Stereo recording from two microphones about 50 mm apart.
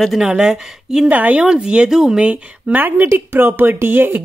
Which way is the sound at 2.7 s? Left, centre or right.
Right.